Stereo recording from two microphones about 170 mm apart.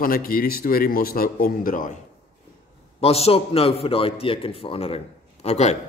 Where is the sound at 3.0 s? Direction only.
35° left (ahead or behind).